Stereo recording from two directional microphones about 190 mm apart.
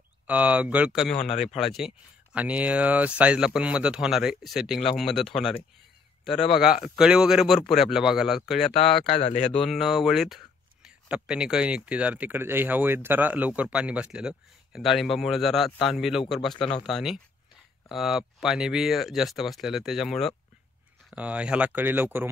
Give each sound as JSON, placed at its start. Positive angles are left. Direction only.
{"t": 0.3, "sound": "a man's voice", "side_deg": -10}
{"t": 9.1, "sound": "speech", "side_deg": 35}
{"t": 9.6, "sound": "speech", "side_deg": 0}